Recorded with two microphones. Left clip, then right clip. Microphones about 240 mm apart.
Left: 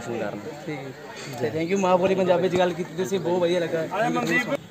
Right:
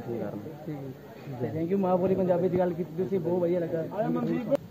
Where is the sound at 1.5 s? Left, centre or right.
Centre.